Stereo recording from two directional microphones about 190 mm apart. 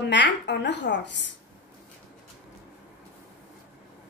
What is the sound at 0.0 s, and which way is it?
A woman's voice, 65° left (ahead or behind).